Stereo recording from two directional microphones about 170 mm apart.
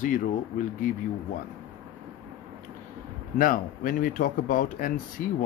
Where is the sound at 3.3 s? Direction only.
55° left (ahead or behind).